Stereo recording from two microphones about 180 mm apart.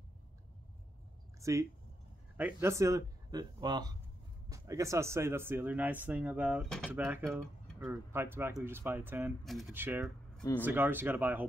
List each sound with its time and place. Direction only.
1.4 s speech: 15° right (ahead or behind)
9.4 s speech: centre (ahead or behind)
9.8 s speech: 10° right (ahead or behind)